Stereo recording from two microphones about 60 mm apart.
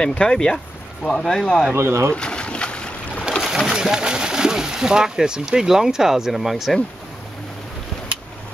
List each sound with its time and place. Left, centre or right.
0.1 s speech: centre
1.8 s speech: right
2.1 s boat: centre
3.4 s speech: centre